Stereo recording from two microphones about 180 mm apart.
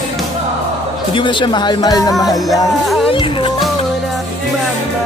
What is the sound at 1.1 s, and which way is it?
Speech, 25° left (ahead or behind).